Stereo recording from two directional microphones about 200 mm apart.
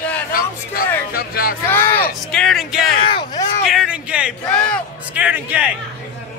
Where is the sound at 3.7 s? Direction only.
5° right (ahead or behind).